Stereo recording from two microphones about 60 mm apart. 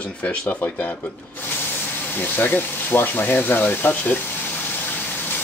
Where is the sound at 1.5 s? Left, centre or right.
Left.